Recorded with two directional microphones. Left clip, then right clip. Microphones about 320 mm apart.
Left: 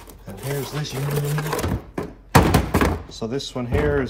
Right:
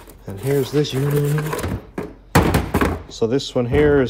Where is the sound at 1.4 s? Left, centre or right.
Centre.